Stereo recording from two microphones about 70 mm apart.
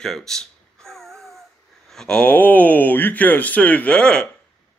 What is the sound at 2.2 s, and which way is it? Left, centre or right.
Speech, left.